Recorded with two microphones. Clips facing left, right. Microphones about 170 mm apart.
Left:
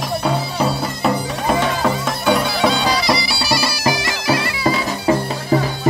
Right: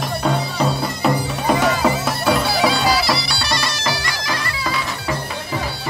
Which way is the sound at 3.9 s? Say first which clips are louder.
Left 5 dB; 20° left (ahead or behind).